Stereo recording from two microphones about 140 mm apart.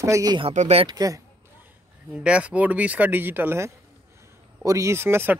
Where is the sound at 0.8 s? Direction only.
30° right (ahead or behind).